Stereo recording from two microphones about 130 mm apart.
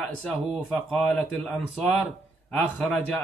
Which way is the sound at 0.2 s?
5° left (ahead or behind).